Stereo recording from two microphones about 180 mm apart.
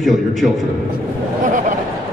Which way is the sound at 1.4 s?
45° right (ahead or behind).